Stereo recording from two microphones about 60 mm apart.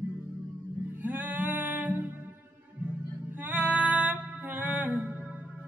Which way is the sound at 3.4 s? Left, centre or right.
Right.